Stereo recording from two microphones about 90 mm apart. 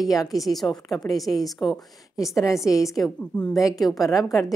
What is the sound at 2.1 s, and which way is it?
Speech, 35° left (ahead or behind).